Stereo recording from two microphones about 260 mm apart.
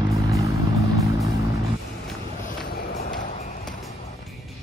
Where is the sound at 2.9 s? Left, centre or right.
Left.